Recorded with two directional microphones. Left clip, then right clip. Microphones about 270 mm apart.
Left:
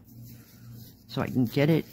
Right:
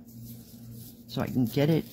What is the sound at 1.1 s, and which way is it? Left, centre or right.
Speech, centre.